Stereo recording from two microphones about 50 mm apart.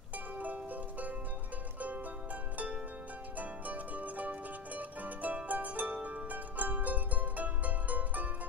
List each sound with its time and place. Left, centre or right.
0.4 s music: right
2.5 s harp: right
3.3 s music: right